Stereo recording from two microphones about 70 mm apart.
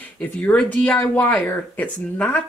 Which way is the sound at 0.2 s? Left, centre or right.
Left.